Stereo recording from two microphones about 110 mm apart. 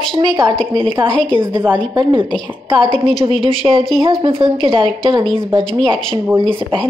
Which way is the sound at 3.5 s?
50° right (ahead or behind).